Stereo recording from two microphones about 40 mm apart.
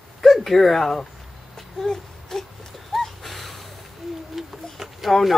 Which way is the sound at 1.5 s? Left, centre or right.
Centre.